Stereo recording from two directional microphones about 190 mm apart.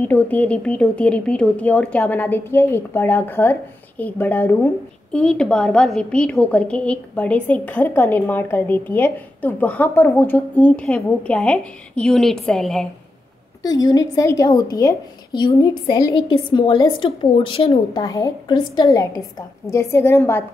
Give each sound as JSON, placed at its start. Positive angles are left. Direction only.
{"t": 0.0, "sound": "a woman's voice", "side_deg": 10}
{"t": 13.6, "sound": "a woman's voice", "side_deg": 20}